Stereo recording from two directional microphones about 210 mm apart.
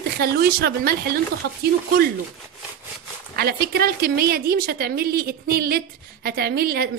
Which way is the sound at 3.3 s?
45° right (ahead or behind).